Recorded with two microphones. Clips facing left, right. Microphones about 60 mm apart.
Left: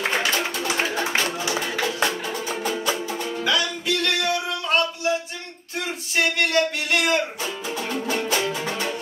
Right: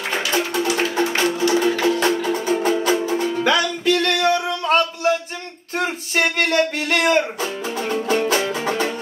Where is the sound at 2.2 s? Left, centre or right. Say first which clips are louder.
Right 7 dB; right.